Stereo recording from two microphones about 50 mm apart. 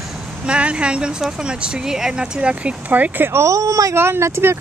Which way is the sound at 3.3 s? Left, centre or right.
Right.